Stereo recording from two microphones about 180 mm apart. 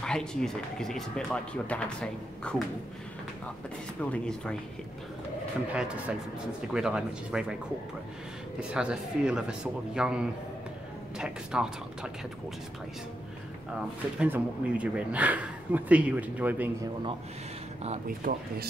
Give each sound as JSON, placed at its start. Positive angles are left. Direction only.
{"t": 0.0, "sound": "speech", "side_deg": 5}
{"t": 4.0, "sound": "speech", "side_deg": 5}
{"t": 5.7, "sound": "speech", "side_deg": -5}
{"t": 8.5, "sound": "speech", "side_deg": -5}
{"t": 14.1, "sound": "speech", "side_deg": -10}
{"t": 18.0, "sound": "speech", "side_deg": -55}